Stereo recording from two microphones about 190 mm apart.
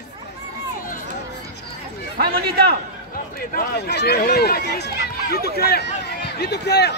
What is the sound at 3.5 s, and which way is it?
Speech, 60° left (ahead or behind).